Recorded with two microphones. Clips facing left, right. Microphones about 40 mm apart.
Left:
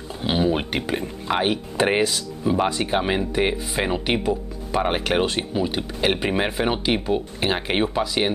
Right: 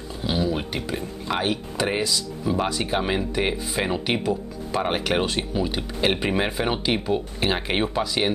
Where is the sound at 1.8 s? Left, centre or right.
Left.